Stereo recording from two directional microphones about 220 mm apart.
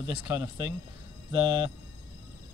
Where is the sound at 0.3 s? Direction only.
15° right (ahead or behind).